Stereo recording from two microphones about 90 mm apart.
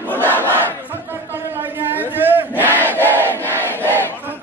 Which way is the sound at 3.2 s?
20° left (ahead or behind).